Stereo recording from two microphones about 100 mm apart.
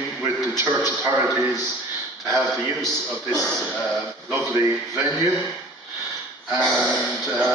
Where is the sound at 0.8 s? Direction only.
25° right (ahead or behind).